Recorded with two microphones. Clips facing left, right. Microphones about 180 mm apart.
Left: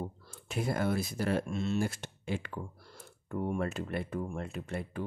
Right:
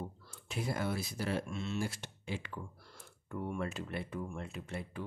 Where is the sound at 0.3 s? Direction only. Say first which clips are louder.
Left 4 dB; 50° left (ahead or behind).